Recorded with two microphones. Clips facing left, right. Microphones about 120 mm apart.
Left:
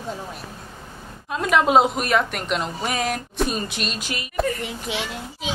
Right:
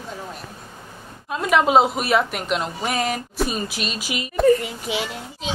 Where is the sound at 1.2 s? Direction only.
Centre (ahead or behind).